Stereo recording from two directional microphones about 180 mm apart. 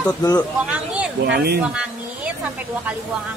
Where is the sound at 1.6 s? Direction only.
5° right (ahead or behind).